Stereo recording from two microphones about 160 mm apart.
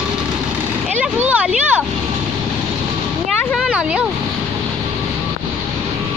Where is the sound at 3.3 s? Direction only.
Centre (ahead or behind).